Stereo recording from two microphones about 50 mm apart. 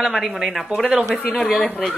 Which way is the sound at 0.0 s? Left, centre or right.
Centre.